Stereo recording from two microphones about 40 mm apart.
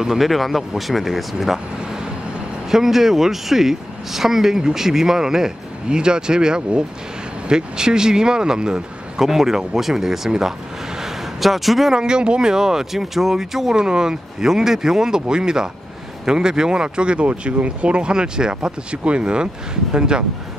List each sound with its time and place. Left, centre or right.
0.0 s speech: centre
0.3 s speech: centre
2.7 s speech: centre
11.0 s a sound: centre
11.9 s speech: right